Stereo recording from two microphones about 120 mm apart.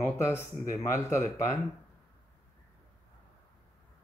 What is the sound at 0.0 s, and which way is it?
Speech, 20° left (ahead or behind).